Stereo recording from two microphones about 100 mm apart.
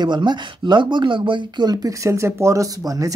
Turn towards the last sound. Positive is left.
turn(degrees=-35)  # may be behind; listen again after turning